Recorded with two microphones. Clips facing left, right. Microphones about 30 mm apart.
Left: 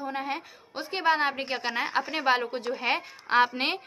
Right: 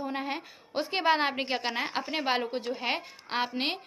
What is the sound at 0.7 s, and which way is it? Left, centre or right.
A woman's voice, right.